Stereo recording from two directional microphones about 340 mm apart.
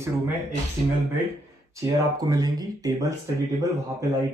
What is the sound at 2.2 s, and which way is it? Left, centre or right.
Speech, centre.